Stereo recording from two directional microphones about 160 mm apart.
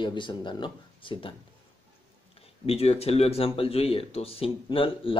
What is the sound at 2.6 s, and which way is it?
Speech, 40° left (ahead or behind).